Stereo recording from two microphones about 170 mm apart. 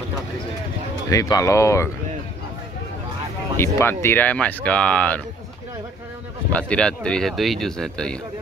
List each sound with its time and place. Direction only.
1.1 s speech: 20° left (ahead or behind)
3.5 s speech: 15° left (ahead or behind)
6.5 s speech: 5° left (ahead or behind)